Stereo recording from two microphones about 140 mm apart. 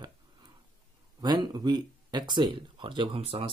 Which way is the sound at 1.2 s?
30° right (ahead or behind).